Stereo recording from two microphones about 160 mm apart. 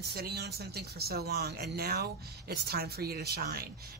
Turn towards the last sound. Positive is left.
turn(degrees=-75)  # may be behind; listen again after turning